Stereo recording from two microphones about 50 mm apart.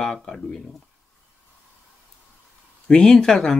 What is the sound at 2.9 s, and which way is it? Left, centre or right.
Speech, centre.